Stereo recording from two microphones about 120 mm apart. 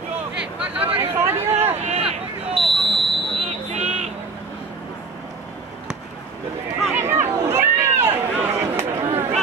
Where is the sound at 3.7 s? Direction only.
75° right (ahead or behind).